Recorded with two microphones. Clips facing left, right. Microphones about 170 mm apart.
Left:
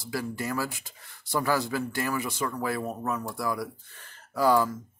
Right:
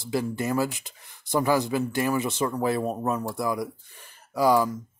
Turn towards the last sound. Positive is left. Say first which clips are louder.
# right 2 dB
turn(degrees=-15)  # may be behind; listen again after turning